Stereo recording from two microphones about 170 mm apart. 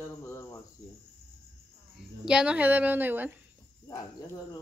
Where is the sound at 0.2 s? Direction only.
15° left (ahead or behind).